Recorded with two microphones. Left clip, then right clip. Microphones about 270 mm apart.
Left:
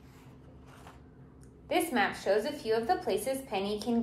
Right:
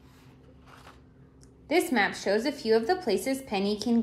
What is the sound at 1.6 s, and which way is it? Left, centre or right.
A woman's voice, right.